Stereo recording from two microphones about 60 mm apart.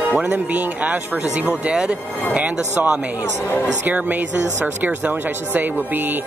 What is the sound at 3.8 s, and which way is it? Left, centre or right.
Speech, right.